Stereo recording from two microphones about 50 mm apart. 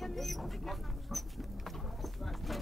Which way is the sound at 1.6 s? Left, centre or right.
Centre.